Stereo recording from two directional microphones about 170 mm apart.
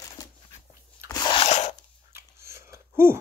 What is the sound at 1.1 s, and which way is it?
Crunch, 20° left (ahead or behind).